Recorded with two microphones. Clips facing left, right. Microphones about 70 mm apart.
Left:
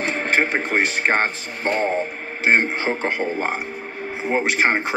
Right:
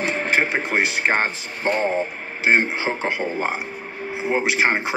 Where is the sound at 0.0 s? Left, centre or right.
Left.